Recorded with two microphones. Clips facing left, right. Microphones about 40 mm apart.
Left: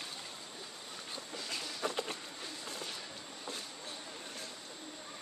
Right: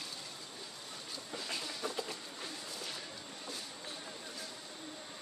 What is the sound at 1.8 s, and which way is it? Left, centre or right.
Insect, left.